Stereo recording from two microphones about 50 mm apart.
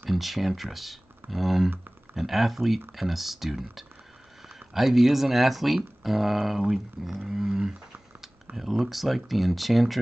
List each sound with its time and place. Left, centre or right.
0.0 s speech: centre